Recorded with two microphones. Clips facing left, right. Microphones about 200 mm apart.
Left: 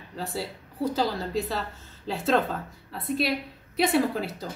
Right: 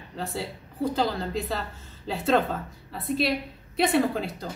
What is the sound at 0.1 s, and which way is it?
A woman's voice, centre (ahead or behind).